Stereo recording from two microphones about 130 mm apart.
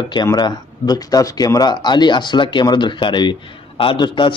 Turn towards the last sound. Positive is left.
turn(degrees=35)  # may be behind; listen again after turning